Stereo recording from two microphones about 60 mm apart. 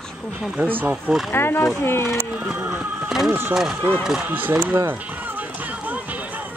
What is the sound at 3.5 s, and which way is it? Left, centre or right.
Speech, centre.